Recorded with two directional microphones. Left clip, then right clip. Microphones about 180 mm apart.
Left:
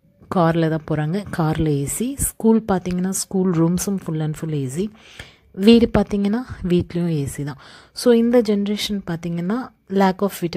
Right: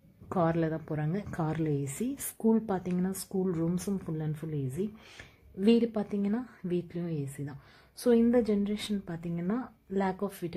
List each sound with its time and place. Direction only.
0.3 s a woman's voice: 25° left (ahead or behind)